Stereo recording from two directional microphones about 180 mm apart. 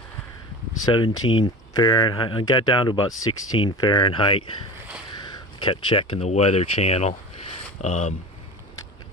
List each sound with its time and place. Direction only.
0.8 s speech: 25° left (ahead or behind)